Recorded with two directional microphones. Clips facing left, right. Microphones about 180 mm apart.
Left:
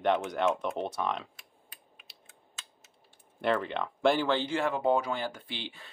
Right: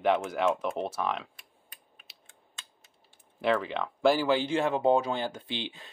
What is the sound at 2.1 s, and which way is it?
Typing, centre (ahead or behind).